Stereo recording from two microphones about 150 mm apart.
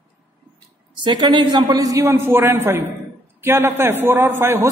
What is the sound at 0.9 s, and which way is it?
A man's voice, 30° right (ahead or behind).